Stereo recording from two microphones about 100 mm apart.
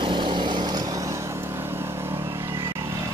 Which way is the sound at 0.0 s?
55° right (ahead or behind).